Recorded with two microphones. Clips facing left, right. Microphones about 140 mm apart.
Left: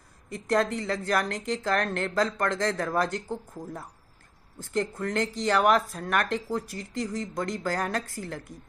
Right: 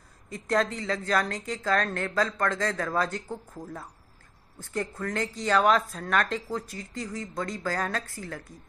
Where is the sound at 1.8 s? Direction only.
15° left (ahead or behind).